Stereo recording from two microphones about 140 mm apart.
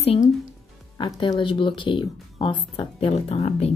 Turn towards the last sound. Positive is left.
turn(degrees=45)  # may be behind; listen again after turning